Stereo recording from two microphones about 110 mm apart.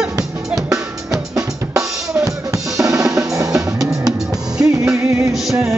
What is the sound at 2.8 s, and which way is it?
Drum, 30° right (ahead or behind).